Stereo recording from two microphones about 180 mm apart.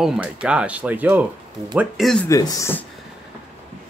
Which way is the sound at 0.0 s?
5° right (ahead or behind).